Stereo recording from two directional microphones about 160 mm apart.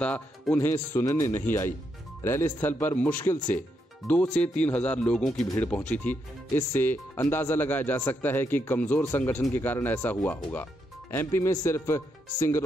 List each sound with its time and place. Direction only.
0.0 s speech: 10° left (ahead or behind)